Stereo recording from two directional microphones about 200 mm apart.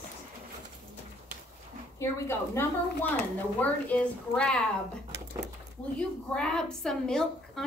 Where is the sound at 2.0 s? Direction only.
10° left (ahead or behind).